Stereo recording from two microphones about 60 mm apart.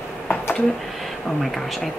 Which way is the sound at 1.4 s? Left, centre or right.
Centre.